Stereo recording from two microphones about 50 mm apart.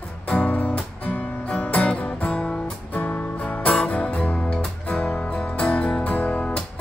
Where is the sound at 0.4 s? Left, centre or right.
Left.